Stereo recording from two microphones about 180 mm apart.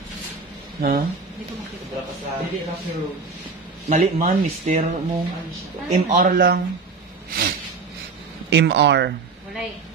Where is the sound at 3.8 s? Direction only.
40° right (ahead or behind).